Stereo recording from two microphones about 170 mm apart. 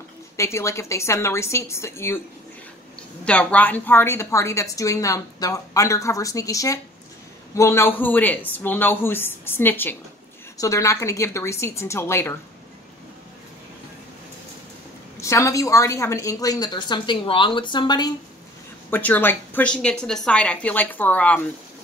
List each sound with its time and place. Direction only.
0.4 s a woman's voice: 15° left (ahead or behind)
3.3 s a woman's voice: 10° left (ahead or behind)
15.1 s a woman's voice: 15° left (ahead or behind)
18.9 s a woman's voice: 10° left (ahead or behind)